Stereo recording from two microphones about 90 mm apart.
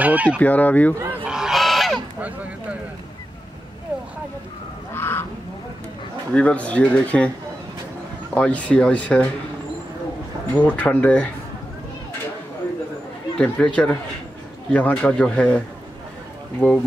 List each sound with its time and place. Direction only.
0.0 s speech: 15° right (ahead or behind)
0.4 s speech: 15° left (ahead or behind)
1.2 s goose: 5° right (ahead or behind)
2.1 s a sound: 15° right (ahead or behind)
4.9 s goose: 25° left (ahead or behind)
6.3 s speech: 15° left (ahead or behind)
8.4 s speech: 15° left (ahead or behind)
10.5 s speech: 15° left (ahead or behind)
13.4 s speech: 10° left (ahead or behind)